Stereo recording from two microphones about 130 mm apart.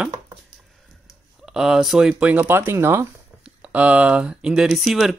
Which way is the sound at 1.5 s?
5° right (ahead or behind).